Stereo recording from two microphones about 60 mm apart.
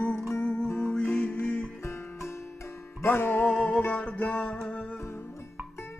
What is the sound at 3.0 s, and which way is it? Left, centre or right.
Music, left.